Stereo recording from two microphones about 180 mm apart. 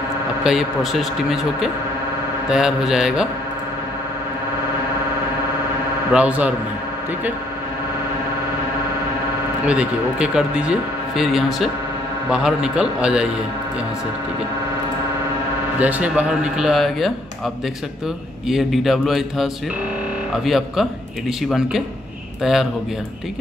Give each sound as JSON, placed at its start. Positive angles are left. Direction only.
{"t": 0.4, "sound": "speech", "side_deg": 0}
{"t": 6.1, "sound": "speech", "side_deg": -5}
{"t": 9.7, "sound": "speech", "side_deg": -5}
{"t": 15.8, "sound": "speech", "side_deg": -5}
{"t": 18.5, "sound": "speech", "side_deg": 0}